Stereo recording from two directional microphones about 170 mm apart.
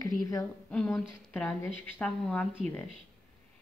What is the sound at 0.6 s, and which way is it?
A woman's voice, 5° left (ahead or behind).